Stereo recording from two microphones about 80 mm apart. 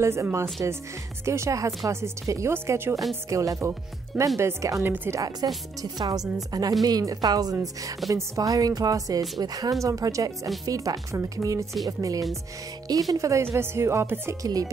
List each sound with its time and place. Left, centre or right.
0.0 s music: right
4.8 s speech: right
5.1 s a woman's voice: right
13.4 s music: right
14.4 s a woman's voice: right